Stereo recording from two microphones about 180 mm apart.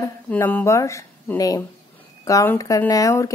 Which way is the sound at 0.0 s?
10° left (ahead or behind).